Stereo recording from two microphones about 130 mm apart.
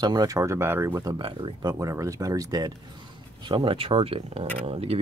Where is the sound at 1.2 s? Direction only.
40° right (ahead or behind).